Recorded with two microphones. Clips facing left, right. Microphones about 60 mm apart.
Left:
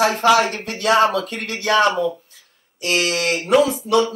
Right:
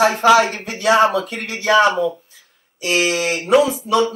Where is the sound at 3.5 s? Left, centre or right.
Centre.